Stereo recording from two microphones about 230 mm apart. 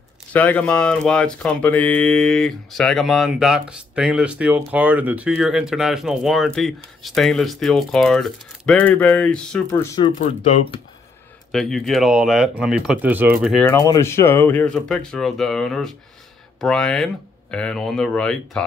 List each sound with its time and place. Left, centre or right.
0.3 s speech: centre
10.1 s speech: left
11.5 s speech: centre
13.7 s speech: centre